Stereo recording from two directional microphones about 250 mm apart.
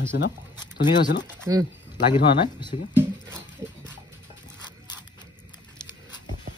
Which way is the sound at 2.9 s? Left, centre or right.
Centre.